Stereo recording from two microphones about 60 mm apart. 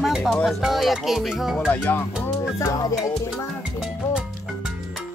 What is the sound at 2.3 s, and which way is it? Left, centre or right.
Music, left.